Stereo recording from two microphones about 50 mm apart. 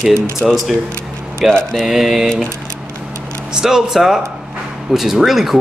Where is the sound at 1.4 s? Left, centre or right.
Centre.